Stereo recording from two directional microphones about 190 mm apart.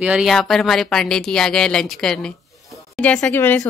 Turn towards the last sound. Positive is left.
turn(degrees=10)  # may be behind; listen again after turning